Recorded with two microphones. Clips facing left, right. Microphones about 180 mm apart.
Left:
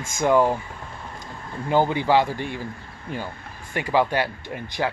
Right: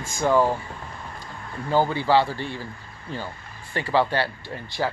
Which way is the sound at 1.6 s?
15° left (ahead or behind).